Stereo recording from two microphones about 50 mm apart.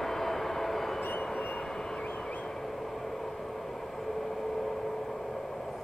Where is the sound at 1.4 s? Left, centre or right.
Left.